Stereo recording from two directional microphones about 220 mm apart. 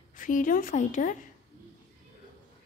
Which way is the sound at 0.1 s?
35° left (ahead or behind).